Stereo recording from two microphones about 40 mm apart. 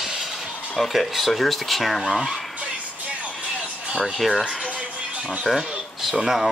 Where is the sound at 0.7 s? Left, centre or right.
Centre.